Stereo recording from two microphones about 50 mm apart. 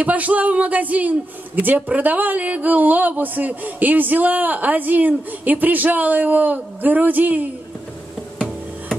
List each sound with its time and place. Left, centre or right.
0.0 s speech: right